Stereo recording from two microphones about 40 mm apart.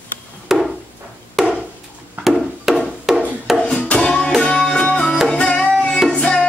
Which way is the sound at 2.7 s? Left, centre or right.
Centre.